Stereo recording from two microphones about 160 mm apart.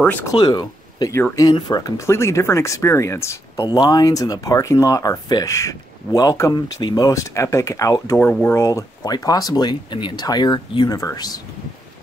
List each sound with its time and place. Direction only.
0.0 s speech: 10° left (ahead or behind)
0.4 s speech: 25° left (ahead or behind)